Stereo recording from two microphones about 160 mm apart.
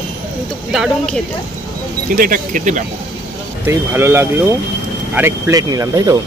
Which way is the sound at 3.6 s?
15° right (ahead or behind).